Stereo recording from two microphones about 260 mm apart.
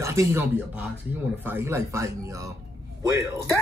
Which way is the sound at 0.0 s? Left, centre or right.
Centre.